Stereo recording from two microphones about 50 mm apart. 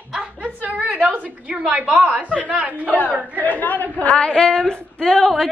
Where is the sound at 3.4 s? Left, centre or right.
Left.